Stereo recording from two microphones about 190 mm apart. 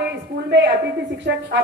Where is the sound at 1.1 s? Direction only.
70° right (ahead or behind).